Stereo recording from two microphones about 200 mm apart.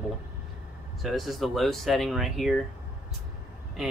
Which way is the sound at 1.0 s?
Centre (ahead or behind).